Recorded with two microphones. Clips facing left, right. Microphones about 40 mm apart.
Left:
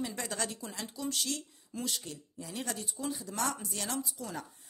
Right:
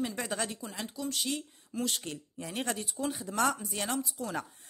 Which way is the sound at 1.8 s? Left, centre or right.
Right.